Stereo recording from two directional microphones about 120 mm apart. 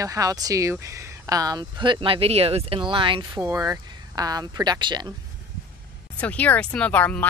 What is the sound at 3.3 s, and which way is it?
Speech, 25° right (ahead or behind).